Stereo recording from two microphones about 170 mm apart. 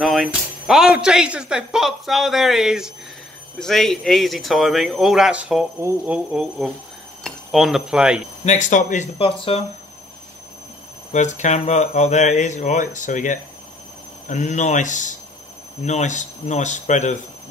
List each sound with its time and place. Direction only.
0.0 s speech: centre (ahead or behind)
8.5 s speech: 45° left (ahead or behind)
9.2 s speech: 35° left (ahead or behind)
11.1 s speech: 45° left (ahead or behind)